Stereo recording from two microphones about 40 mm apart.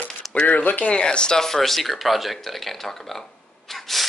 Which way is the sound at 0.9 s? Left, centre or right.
Left.